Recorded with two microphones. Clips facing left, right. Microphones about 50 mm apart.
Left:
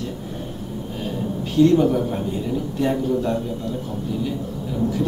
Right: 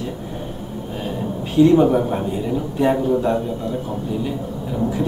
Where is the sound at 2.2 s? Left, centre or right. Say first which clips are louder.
Right 2 dB; centre.